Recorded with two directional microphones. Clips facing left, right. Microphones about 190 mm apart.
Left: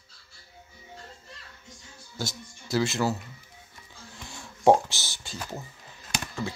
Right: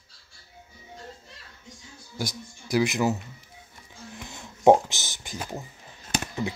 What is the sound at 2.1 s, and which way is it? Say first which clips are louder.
Speech: right 2 dB; 15° right (ahead or behind).